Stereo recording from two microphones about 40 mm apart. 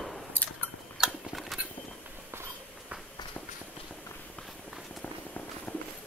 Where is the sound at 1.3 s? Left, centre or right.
Centre.